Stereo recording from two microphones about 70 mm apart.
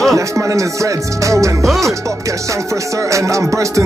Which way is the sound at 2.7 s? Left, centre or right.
Right.